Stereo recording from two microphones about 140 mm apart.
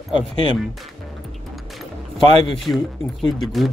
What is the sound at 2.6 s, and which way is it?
Speech, centre (ahead or behind).